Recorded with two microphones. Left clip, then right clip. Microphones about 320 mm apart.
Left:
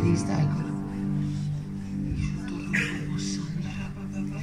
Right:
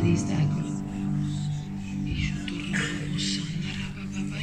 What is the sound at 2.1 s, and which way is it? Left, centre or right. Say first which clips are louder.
Music: right 3 dB; centre.